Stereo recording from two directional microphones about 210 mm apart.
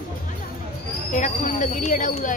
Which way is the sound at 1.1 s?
35° left (ahead or behind).